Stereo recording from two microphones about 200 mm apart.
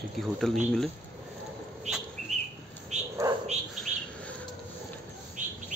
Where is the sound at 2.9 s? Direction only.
35° right (ahead or behind).